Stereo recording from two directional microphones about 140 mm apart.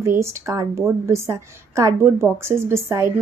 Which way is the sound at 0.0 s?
20° right (ahead or behind).